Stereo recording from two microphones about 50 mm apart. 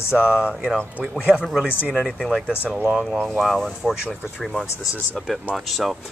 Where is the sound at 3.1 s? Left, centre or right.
Centre.